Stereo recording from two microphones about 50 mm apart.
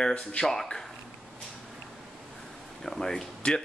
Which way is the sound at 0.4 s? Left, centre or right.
Centre.